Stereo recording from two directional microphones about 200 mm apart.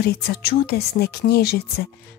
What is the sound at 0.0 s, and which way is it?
Speech, 55° left (ahead or behind).